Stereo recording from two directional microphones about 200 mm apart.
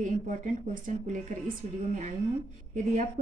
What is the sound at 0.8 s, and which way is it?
Speech, 40° right (ahead or behind).